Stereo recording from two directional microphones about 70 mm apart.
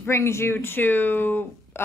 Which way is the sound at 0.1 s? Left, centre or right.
Left.